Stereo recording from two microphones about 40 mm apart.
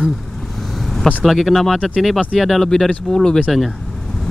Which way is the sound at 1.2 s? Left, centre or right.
Centre.